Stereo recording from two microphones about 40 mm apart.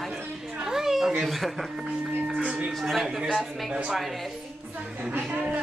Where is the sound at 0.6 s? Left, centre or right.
Centre.